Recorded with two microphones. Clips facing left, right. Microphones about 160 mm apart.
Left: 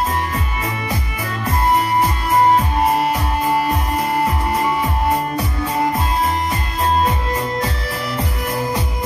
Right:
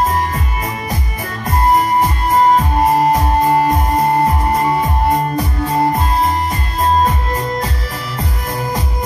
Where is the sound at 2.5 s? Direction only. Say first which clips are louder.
Right 3 dB; 40° right (ahead or behind).